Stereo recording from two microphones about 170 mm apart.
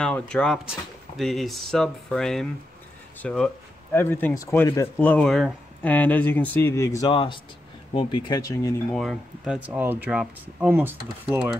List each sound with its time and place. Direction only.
0.0 s speech: 5° left (ahead or behind); by 8.7 s 20° left (ahead or behind)
8.9 s speech: centre (ahead or behind)